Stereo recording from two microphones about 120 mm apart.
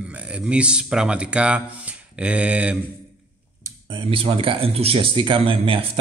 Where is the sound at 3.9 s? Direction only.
45° right (ahead or behind).